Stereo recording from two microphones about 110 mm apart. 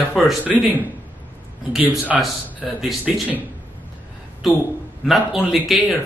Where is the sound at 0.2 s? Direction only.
Centre (ahead or behind).